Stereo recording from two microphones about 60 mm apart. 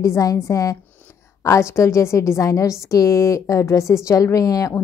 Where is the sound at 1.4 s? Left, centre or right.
Left.